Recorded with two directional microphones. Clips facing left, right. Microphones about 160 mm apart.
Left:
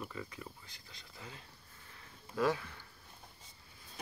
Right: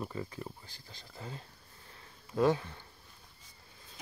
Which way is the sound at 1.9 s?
30° right (ahead or behind).